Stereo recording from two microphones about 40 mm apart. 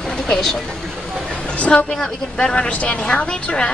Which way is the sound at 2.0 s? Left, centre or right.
Left.